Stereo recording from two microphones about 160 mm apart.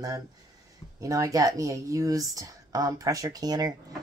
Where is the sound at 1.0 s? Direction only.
20° right (ahead or behind).